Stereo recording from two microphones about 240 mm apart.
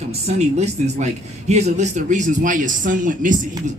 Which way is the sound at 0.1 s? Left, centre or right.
Right.